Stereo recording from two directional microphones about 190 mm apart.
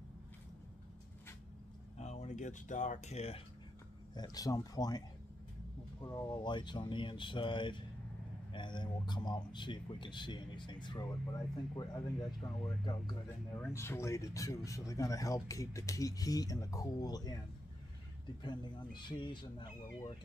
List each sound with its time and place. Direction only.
2.0 s speech: 35° left (ahead or behind)
4.1 s a man's voice: 20° left (ahead or behind)
6.0 s a man's voice: 20° left (ahead or behind)
13.6 s speech: 15° left (ahead or behind)
18.4 s a man's voice: 25° left (ahead or behind)